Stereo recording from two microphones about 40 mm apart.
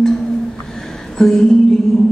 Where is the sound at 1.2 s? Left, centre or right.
Centre.